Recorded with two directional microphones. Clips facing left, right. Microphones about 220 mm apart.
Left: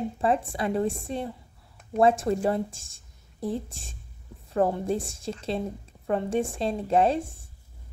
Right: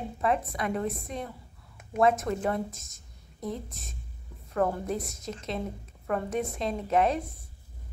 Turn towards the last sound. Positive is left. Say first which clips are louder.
# left 3 dB
turn(degrees=30)  # may be behind; listen again after turning